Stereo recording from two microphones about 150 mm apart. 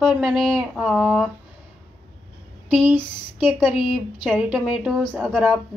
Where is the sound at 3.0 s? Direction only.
30° left (ahead or behind).